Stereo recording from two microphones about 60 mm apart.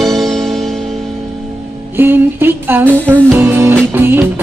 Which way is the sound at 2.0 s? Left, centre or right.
Right.